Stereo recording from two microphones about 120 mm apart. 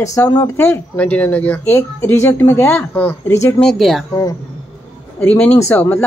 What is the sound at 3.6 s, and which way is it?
Speech, centre (ahead or behind).